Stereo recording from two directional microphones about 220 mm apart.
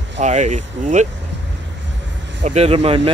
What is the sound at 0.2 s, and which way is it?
Speech, 35° right (ahead or behind).